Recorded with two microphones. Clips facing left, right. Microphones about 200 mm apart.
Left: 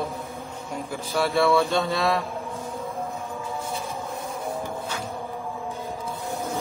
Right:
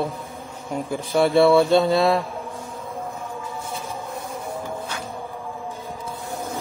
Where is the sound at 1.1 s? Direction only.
30° right (ahead or behind).